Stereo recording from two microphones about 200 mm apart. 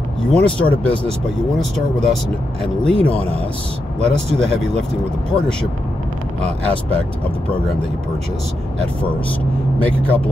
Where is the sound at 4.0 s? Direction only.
30° right (ahead or behind).